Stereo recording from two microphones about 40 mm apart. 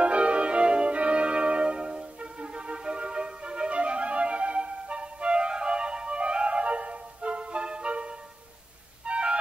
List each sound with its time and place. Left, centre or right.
0.0 s music: right